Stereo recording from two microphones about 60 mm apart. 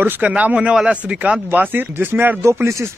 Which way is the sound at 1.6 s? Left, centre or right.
Right.